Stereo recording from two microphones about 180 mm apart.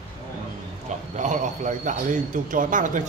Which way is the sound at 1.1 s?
45° right (ahead or behind).